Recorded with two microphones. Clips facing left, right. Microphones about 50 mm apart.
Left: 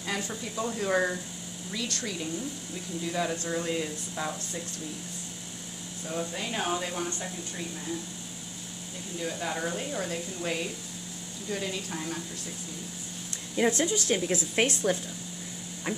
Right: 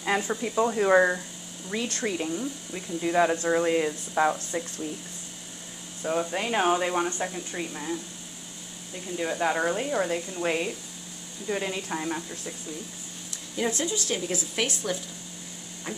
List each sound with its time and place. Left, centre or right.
0.0 s speech: right
6.0 s speech: right
9.2 s speech: right
13.7 s speech: left